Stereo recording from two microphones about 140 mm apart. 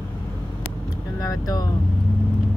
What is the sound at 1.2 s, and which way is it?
Vehicle, 25° left (ahead or behind).